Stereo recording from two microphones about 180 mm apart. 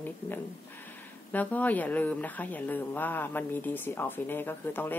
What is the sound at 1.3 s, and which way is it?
A woman's voice, 10° left (ahead or behind).